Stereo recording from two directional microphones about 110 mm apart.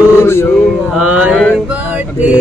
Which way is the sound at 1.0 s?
10° right (ahead or behind).